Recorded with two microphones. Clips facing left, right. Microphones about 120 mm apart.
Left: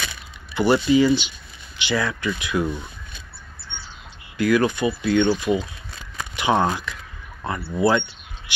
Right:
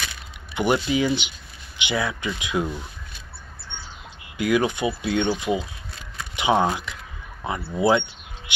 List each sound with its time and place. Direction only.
0.6 s speech: 15° right (ahead or behind)
4.4 s speech: 15° right (ahead or behind)